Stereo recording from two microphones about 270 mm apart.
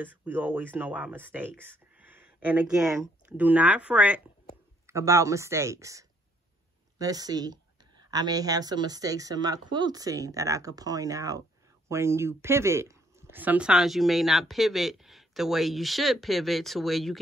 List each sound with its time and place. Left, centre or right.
0.0 s speech: centre